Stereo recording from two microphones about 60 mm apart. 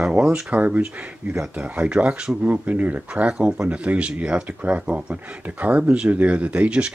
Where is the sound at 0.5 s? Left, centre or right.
Right.